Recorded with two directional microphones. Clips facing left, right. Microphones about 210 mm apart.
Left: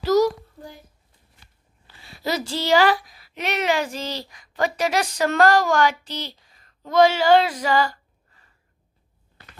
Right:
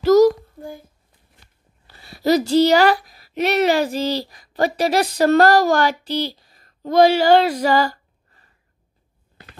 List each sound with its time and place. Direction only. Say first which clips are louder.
0.0 s child singing: right 6 dB; 45° right (ahead or behind)
1.9 s a woman's voice: right 10 dB; 40° right (ahead or behind)